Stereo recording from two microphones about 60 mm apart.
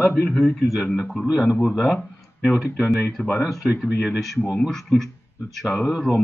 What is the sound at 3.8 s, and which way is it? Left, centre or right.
Speech, centre.